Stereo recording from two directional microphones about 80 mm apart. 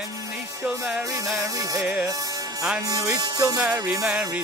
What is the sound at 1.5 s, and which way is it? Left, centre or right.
Music, right.